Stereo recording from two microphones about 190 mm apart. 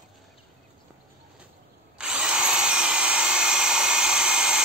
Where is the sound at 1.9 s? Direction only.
5° right (ahead or behind).